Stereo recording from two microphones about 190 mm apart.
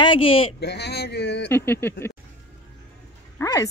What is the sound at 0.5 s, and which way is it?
Speech, 60° left (ahead or behind).